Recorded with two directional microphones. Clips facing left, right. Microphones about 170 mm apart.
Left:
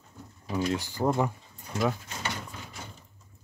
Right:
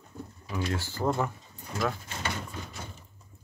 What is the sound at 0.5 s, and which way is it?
Speech, 20° left (ahead or behind).